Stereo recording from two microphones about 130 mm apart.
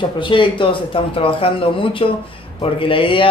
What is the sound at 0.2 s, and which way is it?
Speech, 40° left (ahead or behind).